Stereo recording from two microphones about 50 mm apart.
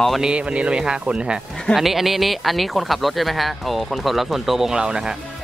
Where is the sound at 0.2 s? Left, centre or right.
Right.